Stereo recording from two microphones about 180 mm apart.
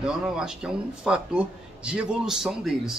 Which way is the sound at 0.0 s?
5° right (ahead or behind).